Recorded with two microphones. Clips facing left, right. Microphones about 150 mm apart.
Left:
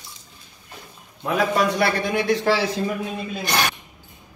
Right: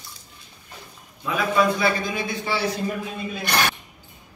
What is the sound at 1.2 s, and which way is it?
A man's voice, 65° left (ahead or behind).